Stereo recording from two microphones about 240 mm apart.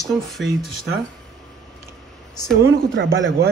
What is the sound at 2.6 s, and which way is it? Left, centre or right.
Speech, right.